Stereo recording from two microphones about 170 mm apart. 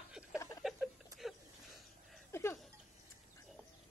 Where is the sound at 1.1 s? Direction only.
Centre (ahead or behind).